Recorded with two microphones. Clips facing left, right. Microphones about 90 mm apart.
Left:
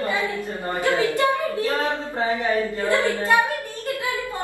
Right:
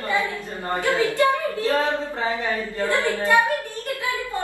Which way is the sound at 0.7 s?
20° left (ahead or behind).